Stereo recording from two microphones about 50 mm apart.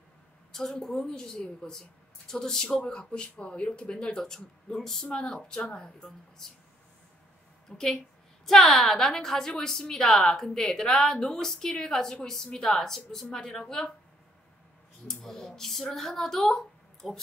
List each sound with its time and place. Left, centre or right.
0.5 s a woman's voice: centre
7.7 s a woman's voice: centre
15.0 s a woman's voice: centre